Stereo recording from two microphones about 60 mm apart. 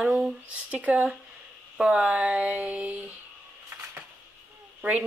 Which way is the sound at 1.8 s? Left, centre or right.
Centre.